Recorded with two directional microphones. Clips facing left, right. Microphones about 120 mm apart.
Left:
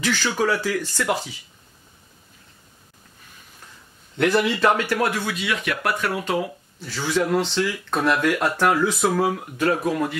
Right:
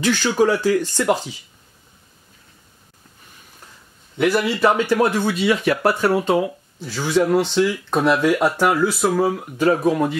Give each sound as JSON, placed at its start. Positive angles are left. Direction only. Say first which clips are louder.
{"t": 0.0, "sound": "speech", "louder": "right 5 dB", "side_deg": -15}
{"t": 4.2, "sound": "speech", "louder": "right 2 dB", "side_deg": -5}
{"t": 5.4, "sound": "speech", "louder": "right 8 dB", "side_deg": -35}
{"t": 6.8, "sound": "speech", "louder": "right 4 dB", "side_deg": -15}